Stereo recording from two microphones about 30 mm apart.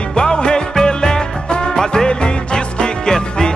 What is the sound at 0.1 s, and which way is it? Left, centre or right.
Music, left.